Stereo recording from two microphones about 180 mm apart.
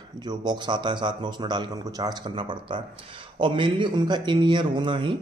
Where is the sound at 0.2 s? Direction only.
25° right (ahead or behind).